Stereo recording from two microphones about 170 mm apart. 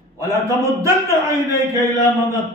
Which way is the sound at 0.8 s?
15° right (ahead or behind).